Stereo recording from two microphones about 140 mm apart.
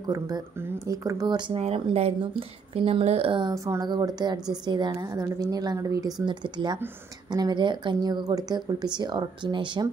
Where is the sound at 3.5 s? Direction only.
20° right (ahead or behind).